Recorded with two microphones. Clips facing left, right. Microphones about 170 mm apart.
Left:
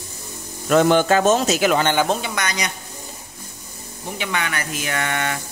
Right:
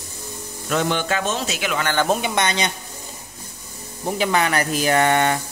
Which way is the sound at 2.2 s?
25° right (ahead or behind).